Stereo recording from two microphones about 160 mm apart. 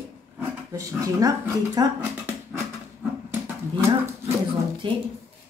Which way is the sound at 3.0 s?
10° right (ahead or behind).